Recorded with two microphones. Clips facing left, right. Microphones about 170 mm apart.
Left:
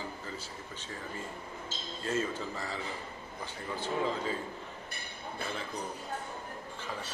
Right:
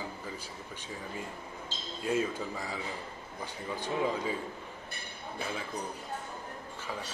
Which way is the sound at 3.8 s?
10° right (ahead or behind).